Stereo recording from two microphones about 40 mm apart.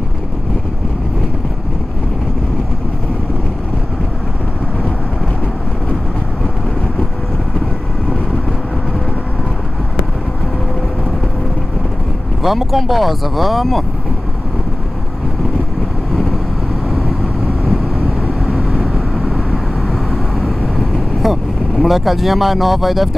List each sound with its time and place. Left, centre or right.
12.4 s speech: centre
18.5 s vehicle: right
20.7 s vehicle: centre